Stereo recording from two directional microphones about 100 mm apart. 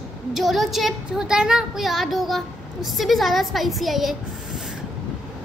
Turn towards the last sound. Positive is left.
turn(degrees=0)  # may be behind; listen again after turning